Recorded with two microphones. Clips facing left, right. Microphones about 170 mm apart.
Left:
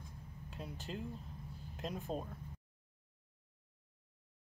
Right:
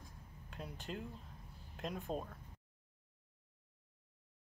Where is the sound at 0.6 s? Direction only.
Centre (ahead or behind).